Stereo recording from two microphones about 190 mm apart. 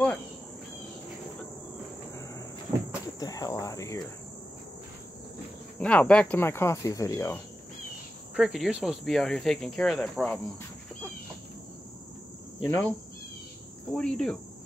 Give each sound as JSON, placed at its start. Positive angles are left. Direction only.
{"t": 3.2, "sound": "cricket", "side_deg": 20}
{"t": 5.8, "sound": "speech", "side_deg": 5}
{"t": 8.4, "sound": "speech", "side_deg": 0}
{"t": 12.6, "sound": "speech", "side_deg": 15}
{"t": 13.9, "sound": "speech", "side_deg": 5}